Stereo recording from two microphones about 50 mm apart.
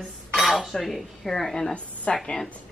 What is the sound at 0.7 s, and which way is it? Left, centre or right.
Speech, centre.